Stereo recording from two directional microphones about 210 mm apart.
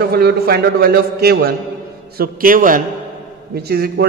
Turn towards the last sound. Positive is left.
turn(degrees=-50)  # may be behind; listen again after turning